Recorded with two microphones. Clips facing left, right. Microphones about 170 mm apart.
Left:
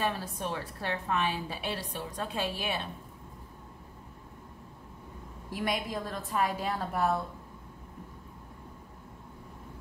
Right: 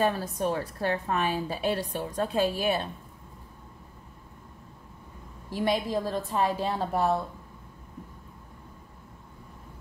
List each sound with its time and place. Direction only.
0.0 s a woman's voice: 40° right (ahead or behind)
5.5 s a woman's voice: 30° right (ahead or behind)